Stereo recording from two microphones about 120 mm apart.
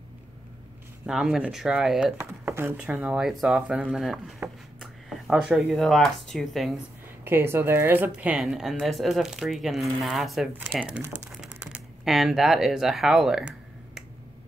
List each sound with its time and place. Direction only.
1.0 s speech: 5° right (ahead or behind)
2.1 s speech: 20° right (ahead or behind)
2.8 s speech: 10° right (ahead or behind)
4.4 s a sound: 20° right (ahead or behind)
4.7 s a sound: 5° right (ahead or behind)
5.8 s speech: 5° left (ahead or behind)
7.2 s speech: 20° right (ahead or behind); by 10.5 s centre (ahead or behind)
10.8 s speech: 10° right (ahead or behind)